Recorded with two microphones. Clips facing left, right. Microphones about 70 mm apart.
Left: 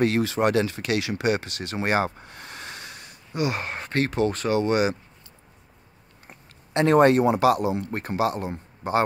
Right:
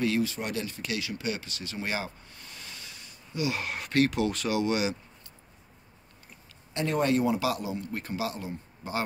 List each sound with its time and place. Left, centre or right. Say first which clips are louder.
0.0 s speech: left 7 dB; left
3.6 s speech: even; left
6.2 s speech: left 7 dB; left